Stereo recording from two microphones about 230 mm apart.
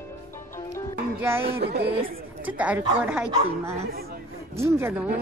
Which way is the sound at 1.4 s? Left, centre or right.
Right.